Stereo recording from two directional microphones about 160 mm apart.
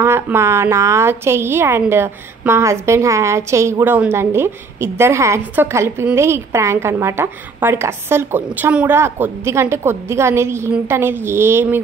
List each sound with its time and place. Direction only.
0.0 s a woman's voice: 15° right (ahead or behind)